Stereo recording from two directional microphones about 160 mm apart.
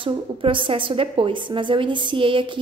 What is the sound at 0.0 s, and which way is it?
A woman's voice, 30° right (ahead or behind).